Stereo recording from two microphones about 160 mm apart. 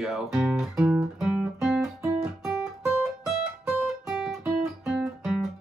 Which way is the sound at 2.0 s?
15° right (ahead or behind).